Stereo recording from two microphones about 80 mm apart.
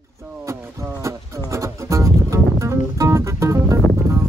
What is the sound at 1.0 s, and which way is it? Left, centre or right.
Music, right.